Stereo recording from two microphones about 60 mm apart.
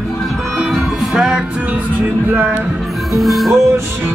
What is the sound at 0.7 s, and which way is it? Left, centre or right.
Music, centre.